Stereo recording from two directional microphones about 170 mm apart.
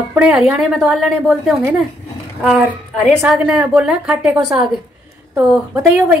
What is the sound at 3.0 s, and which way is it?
A woman's voice, 5° right (ahead or behind).